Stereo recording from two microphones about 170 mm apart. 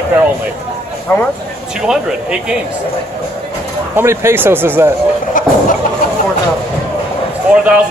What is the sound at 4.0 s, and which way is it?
Speech, 15° right (ahead or behind).